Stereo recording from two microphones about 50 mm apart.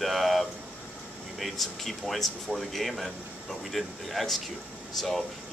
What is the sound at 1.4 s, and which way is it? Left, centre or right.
Speech, centre.